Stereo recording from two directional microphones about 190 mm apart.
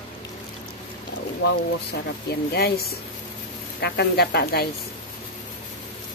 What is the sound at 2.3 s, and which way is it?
Speech, 55° left (ahead or behind).